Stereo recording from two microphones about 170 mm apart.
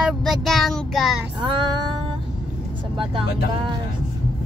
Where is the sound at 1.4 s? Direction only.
25° right (ahead or behind).